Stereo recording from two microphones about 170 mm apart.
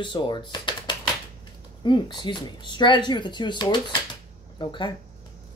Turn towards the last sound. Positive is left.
turn(degrees=30)  # may be behind; listen again after turning